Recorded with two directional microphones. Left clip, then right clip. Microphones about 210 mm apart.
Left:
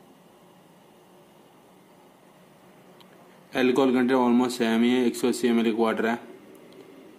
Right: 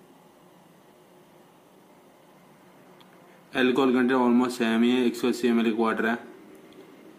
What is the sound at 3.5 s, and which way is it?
Speech, 10° left (ahead or behind).